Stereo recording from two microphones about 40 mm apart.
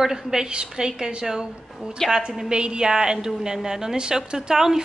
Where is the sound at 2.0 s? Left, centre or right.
Centre.